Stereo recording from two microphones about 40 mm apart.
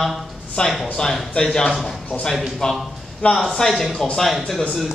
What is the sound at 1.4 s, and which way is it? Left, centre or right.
A man's voice, centre.